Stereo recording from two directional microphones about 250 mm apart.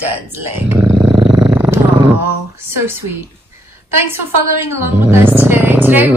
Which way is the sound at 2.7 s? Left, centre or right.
Centre.